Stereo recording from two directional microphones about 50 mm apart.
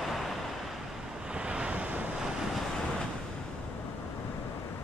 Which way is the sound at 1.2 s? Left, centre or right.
Right.